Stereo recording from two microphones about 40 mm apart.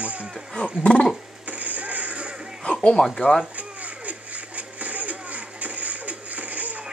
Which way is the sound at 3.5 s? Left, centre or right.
Right.